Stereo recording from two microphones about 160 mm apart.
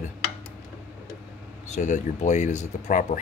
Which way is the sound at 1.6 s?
50° left (ahead or behind).